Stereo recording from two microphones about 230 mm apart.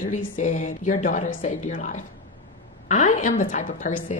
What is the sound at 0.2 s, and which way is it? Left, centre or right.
A woman's voice, left.